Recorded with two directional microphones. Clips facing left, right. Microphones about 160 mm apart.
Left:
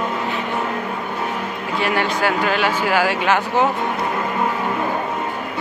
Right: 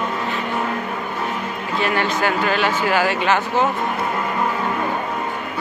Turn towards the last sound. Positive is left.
turn(degrees=10)  # may be behind; listen again after turning